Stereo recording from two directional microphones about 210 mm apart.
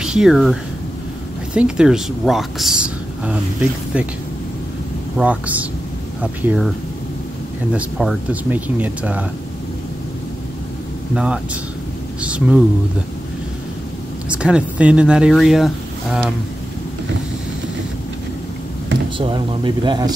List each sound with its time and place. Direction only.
0.0 s speech: 5° right (ahead or behind)
5.1 s speech: 5° right (ahead or behind)
7.7 s speech: 5° right (ahead or behind)
11.1 s speech: 5° right (ahead or behind)
14.3 s speech: 5° right (ahead or behind)
19.1 s speech: 25° right (ahead or behind)